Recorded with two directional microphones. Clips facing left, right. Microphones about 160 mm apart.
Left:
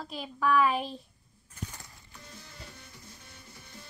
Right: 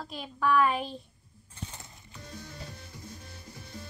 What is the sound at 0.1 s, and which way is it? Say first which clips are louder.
Speech: even; centre (ahead or behind).